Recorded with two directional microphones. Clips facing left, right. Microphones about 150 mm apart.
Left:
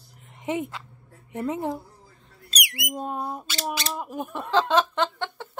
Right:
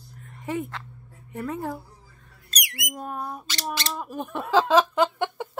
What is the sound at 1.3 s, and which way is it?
Squawk, 20° left (ahead or behind).